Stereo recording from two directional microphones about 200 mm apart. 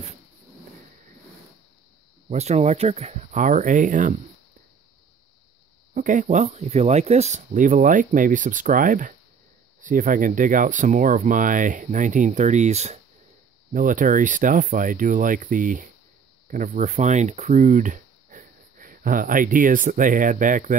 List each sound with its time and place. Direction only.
2.2 s speech: 35° right (ahead or behind)
5.9 s speech: 40° right (ahead or behind)